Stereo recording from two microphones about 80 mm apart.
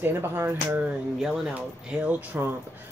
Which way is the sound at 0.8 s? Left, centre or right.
Centre.